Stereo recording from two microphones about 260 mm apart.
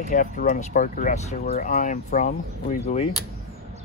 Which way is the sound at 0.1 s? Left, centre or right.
Left.